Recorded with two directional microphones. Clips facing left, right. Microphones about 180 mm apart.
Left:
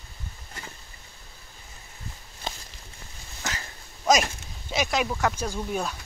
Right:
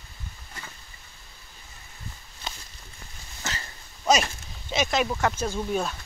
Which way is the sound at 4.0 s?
10° left (ahead or behind).